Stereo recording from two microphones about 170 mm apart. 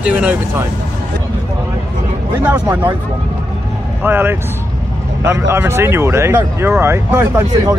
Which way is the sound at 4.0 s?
10° right (ahead or behind).